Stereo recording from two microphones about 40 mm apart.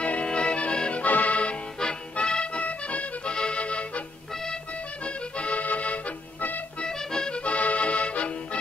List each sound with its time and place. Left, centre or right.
0.0 s accordion: left
1.0 s accordion: left
2.1 s music: left
4.3 s accordion: centre
5.0 s accordion: left
6.8 s accordion: centre